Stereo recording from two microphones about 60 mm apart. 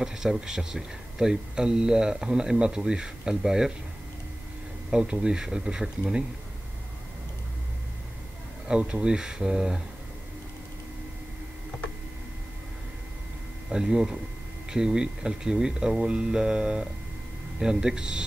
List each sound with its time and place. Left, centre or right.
0.0 s speech: centre
4.9 s speech: centre
8.6 s speech: centre
13.7 s speech: centre